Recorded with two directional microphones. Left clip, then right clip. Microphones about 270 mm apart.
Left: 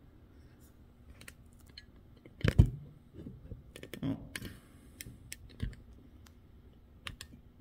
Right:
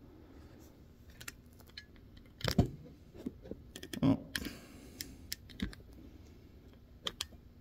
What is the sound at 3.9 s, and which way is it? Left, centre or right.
Typing, right.